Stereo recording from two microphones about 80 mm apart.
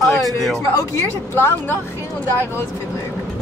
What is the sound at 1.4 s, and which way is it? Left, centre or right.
Speech, left.